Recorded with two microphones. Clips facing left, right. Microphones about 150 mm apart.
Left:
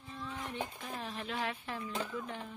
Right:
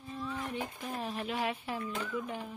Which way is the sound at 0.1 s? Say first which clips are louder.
Right 4 dB; 10° right (ahead or behind).